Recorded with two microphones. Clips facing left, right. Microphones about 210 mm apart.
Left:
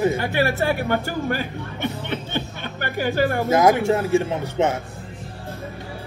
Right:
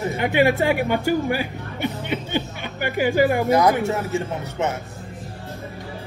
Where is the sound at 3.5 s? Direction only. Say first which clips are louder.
Left 1 dB; 25° left (ahead or behind).